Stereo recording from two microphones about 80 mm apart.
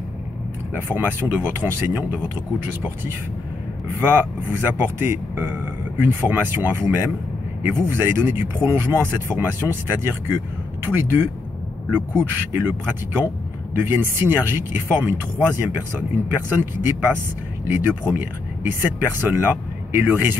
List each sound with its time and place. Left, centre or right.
0.7 s speech: right
4.0 s speech: right
13.7 s speech: right